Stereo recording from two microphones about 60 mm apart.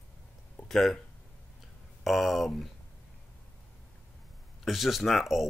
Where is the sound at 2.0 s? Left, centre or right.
Centre.